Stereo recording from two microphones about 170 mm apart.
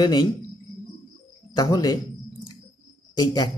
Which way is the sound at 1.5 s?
20° left (ahead or behind).